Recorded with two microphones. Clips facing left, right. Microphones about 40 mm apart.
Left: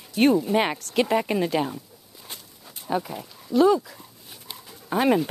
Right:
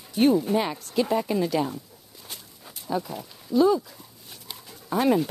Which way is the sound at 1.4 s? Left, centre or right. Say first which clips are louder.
Left 1 dB; left.